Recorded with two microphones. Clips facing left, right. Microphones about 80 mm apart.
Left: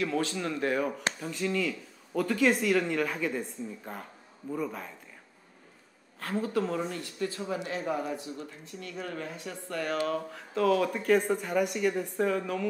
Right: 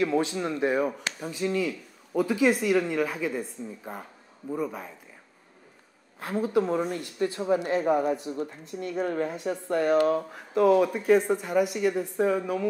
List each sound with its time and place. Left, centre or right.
0.0 s speech: centre
6.1 s speech: centre
7.3 s speech: right; by 12.6 s centre